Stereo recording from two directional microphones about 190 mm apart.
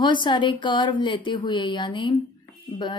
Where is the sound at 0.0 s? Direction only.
25° left (ahead or behind).